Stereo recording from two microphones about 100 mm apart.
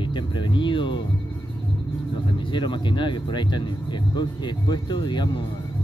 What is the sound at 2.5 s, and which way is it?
Speech, 50° left (ahead or behind).